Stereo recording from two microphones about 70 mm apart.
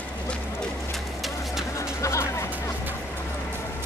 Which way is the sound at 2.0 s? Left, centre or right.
Left.